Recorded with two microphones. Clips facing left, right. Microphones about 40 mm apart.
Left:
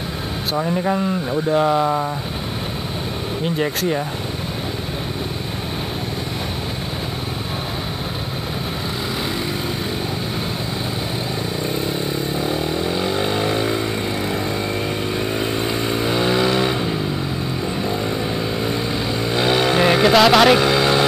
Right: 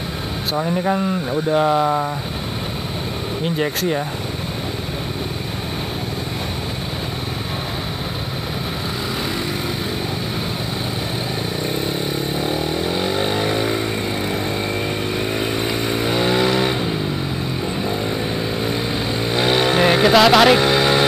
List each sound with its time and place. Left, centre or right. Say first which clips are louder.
0.6 s speech: even; centre
3.5 s speech: even; centre
13.0 s vehicle: even; right
15.1 s vehicle: even; centre
16.3 s vehicle: even; right
19.2 s vehicle: even; right
19.7 s music: even; centre
20.6 s music: even; right